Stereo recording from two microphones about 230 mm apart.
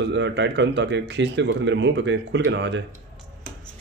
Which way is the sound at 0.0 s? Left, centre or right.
Right.